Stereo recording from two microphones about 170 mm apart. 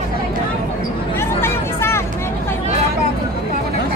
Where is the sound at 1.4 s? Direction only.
15° left (ahead or behind).